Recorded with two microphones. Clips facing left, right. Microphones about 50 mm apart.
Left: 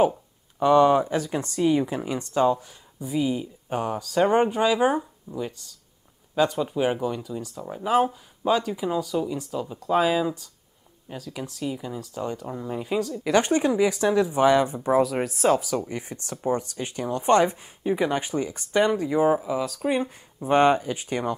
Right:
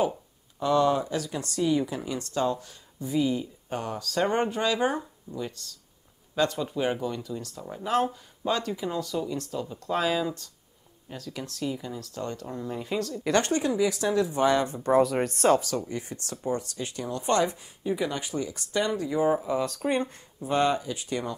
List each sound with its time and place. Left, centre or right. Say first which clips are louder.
0.6 s speech: left 6 dB; left
14.9 s speech: right 3 dB; centre
15.7 s speech: left 3 dB; left
19.3 s speech: left 1 dB; centre
20.3 s speech: left 6 dB; left